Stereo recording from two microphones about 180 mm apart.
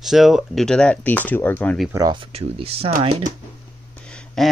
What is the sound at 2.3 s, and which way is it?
Speech, 30° right (ahead or behind).